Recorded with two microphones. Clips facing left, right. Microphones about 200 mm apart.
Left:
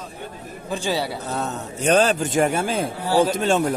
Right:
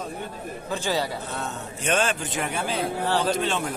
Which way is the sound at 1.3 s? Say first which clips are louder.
Left 5 dB; 40° left (ahead or behind).